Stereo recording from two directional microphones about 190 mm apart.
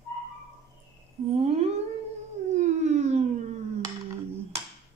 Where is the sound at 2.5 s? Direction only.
35° right (ahead or behind).